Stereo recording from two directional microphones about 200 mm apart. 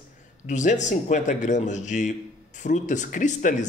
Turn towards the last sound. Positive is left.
turn(degrees=40)  # may be behind; listen again after turning